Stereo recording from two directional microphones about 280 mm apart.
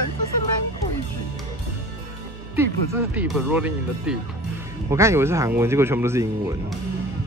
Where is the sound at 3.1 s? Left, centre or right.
Centre.